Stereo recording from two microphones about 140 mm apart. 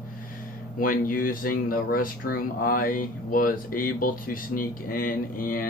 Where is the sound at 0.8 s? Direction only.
90° left.